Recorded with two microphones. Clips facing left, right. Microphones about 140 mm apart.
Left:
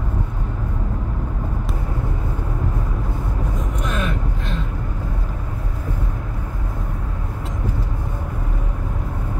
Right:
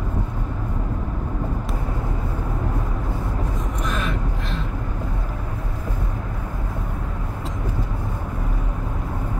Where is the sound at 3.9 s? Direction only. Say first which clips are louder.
Left 1 dB; centre (ahead or behind).